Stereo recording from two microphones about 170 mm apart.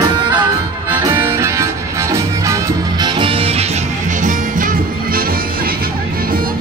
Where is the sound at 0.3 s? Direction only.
10° right (ahead or behind).